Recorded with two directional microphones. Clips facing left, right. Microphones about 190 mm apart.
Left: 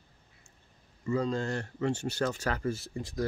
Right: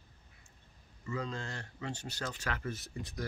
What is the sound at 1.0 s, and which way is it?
Speech, 35° left (ahead or behind).